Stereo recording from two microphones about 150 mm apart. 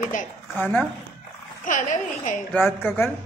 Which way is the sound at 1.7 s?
60° left (ahead or behind).